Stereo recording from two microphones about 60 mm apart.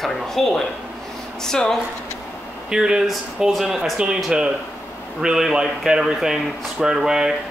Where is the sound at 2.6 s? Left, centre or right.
Centre.